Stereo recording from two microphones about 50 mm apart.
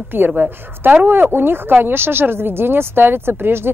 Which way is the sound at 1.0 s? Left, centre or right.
Right.